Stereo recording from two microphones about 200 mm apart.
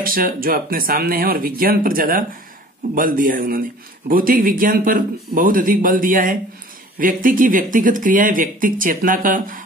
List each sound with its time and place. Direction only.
0.0 s speech: 45° right (ahead or behind)